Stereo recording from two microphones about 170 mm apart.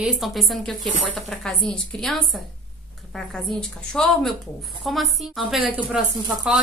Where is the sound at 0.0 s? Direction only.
Centre (ahead or behind).